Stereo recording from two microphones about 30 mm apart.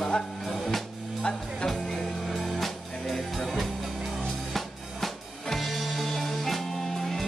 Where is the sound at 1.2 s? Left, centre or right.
Left.